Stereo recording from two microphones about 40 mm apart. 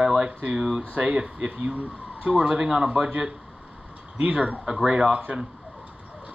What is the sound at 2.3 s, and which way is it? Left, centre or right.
Speech, right.